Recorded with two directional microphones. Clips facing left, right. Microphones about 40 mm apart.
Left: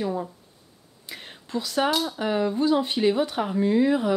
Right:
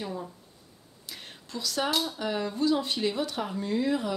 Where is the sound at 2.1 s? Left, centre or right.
Left.